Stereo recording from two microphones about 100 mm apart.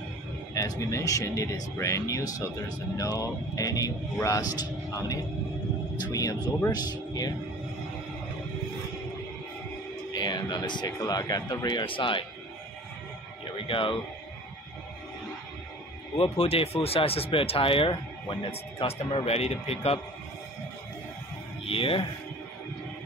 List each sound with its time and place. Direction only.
0.6 s speech: 35° left (ahead or behind)
10.1 s speech: 45° left (ahead or behind)
13.7 s speech: 60° left (ahead or behind)
16.2 s speech: 80° left
21.6 s speech: 65° left (ahead or behind)